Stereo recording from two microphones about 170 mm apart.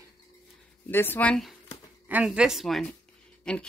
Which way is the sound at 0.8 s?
10° left (ahead or behind).